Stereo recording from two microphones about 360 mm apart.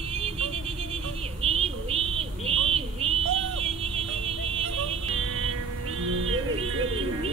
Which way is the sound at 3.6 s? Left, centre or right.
Centre.